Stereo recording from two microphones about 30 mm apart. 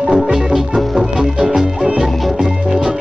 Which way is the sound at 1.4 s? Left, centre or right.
Right.